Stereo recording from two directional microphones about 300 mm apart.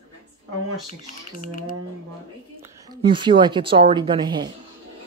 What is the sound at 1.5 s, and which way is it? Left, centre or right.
Speech, left.